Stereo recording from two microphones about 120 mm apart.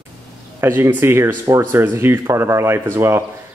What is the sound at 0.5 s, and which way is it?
Speech, 20° right (ahead or behind).